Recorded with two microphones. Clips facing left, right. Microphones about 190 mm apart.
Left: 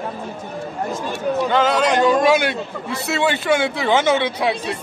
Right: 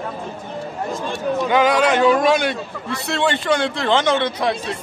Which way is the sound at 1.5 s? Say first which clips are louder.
Right 2 dB; 10° right (ahead or behind).